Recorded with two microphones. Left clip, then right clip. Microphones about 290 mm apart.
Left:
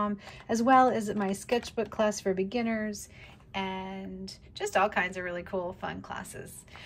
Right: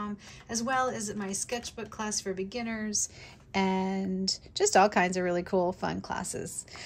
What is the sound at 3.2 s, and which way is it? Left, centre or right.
A woman's voice, centre.